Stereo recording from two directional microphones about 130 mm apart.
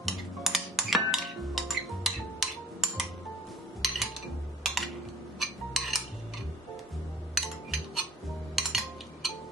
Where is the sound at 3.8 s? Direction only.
Centre (ahead or behind).